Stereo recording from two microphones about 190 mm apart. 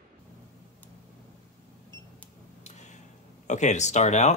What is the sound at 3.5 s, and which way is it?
Speech, 40° left (ahead or behind).